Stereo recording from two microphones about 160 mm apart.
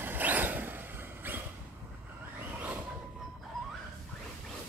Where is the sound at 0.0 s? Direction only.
10° right (ahead or behind).